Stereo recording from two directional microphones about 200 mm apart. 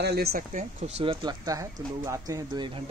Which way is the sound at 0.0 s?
55° right (ahead or behind).